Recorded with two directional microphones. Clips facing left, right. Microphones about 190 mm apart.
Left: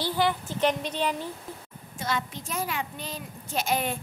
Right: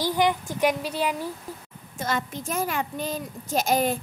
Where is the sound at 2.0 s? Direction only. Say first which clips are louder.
Right 2 dB; 45° right (ahead or behind).